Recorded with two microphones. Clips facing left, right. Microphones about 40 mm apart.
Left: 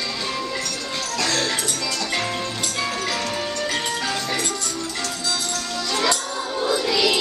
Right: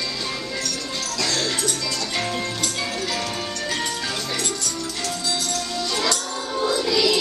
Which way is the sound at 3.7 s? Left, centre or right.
Left.